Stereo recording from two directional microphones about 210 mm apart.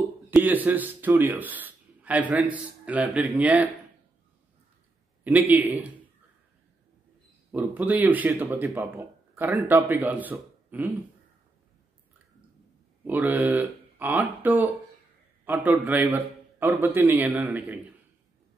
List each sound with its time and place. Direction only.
0.3 s a man's voice: 10° right (ahead or behind)
5.2 s a man's voice: 10° right (ahead or behind)
7.5 s a man's voice: 5° right (ahead or behind)
13.0 s a man's voice: 10° right (ahead or behind)